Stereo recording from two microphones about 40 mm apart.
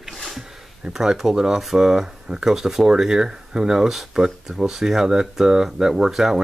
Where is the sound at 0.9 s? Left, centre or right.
Centre.